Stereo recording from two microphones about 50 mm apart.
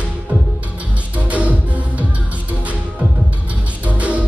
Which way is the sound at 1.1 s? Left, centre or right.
Right.